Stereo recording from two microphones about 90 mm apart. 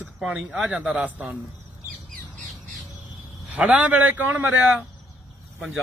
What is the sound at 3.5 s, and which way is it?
Speech, 15° right (ahead or behind).